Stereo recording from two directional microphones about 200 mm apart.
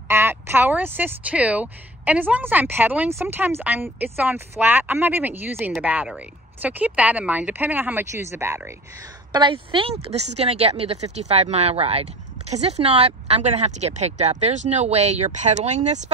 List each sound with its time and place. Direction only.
0.1 s speech: 10° right (ahead or behind); by 16.1 s 35° right (ahead or behind)